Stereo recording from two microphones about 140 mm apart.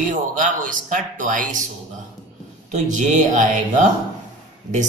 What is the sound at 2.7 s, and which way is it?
Speech, 60° right (ahead or behind).